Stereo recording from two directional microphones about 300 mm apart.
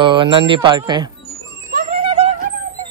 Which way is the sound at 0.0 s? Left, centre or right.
Centre.